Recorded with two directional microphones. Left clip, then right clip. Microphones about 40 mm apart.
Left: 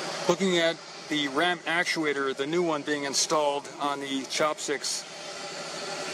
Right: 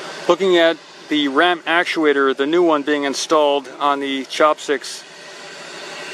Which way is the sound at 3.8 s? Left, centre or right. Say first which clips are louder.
Right 10 dB; right.